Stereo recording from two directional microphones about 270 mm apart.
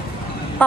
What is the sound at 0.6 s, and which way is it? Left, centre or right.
Music, centre.